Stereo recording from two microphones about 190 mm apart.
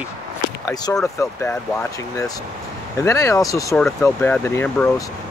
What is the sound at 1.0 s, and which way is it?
Speech, 15° left (ahead or behind).